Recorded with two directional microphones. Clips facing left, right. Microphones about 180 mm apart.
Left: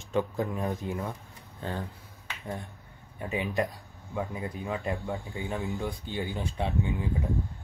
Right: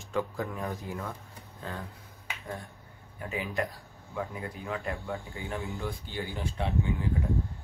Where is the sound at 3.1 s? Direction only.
25° left (ahead or behind).